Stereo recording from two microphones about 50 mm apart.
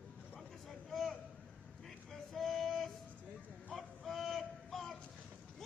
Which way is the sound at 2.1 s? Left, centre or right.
Centre.